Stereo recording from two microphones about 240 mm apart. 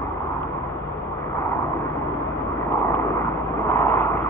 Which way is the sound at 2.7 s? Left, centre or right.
Centre.